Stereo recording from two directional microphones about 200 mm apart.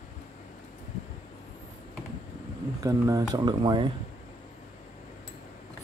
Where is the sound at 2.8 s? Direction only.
15° right (ahead or behind).